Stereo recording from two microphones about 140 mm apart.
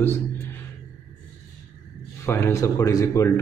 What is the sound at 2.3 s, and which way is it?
Speech, 20° left (ahead or behind).